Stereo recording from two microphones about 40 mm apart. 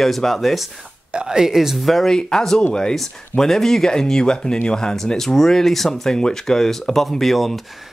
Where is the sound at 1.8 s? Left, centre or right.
Centre.